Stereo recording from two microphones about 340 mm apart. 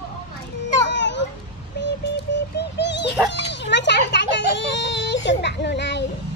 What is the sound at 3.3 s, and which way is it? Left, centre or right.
Children playing, left.